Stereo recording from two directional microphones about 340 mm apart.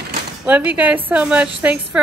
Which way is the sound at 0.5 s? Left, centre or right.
Centre.